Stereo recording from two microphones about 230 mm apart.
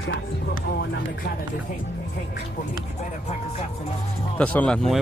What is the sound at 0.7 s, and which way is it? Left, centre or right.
Speech, left.